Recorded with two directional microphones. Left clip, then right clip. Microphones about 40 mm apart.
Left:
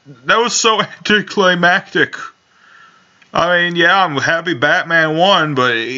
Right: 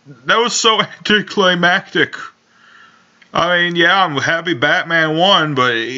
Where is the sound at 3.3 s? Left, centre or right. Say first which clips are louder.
Left 1 dB; left.